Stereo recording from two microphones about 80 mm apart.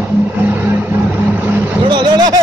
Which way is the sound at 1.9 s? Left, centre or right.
Right.